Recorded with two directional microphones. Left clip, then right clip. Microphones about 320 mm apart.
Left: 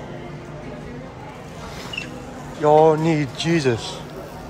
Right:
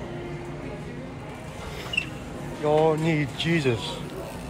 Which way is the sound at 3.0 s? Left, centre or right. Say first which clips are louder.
Left 4 dB; left.